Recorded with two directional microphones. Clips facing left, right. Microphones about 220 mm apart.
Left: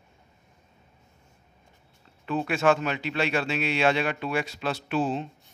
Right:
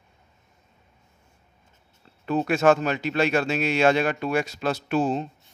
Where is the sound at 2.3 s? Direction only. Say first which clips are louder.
Right 4 dB; 40° right (ahead or behind).